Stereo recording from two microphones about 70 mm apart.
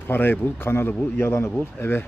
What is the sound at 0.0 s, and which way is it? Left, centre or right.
Speech, left.